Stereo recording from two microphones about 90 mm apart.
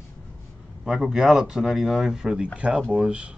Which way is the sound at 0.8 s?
5° right (ahead or behind).